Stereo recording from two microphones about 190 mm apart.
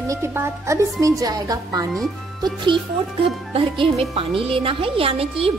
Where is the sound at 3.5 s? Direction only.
30° right (ahead or behind).